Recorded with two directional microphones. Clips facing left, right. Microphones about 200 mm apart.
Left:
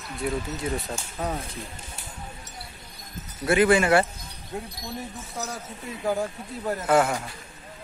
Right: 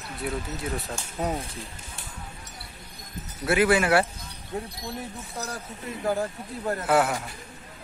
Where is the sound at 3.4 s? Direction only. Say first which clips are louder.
Left 2 dB; 5° right (ahead or behind).